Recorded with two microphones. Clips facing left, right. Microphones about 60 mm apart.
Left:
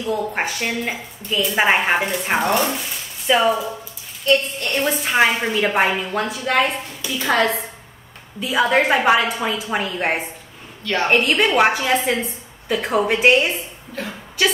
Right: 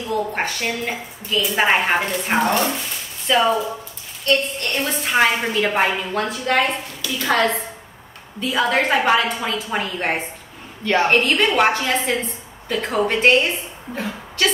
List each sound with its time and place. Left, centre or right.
0.1 s a woman's voice: centre
4.2 s a woman's voice: centre
10.8 s a woman's voice: right
11.1 s a woman's voice: centre